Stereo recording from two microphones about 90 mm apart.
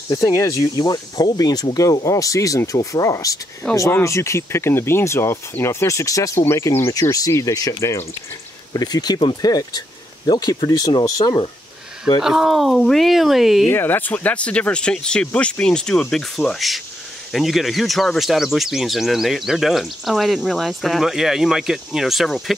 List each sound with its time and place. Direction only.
0.1 s speech: 40° left (ahead or behind)
3.6 s speech: 5° left (ahead or behind)
4.0 s speech: 35° left (ahead or behind)
6.4 s speech: 25° left (ahead or behind); by 11.3 s 45° left (ahead or behind)
12.2 s speech: 5° right (ahead or behind)
13.7 s speech: 25° left (ahead or behind); by 22.6 s centre (ahead or behind)